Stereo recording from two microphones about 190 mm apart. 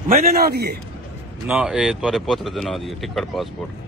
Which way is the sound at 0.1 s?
50° right (ahead or behind).